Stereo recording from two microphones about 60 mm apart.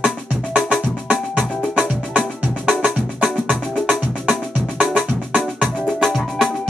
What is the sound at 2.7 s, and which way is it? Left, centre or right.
Music, right.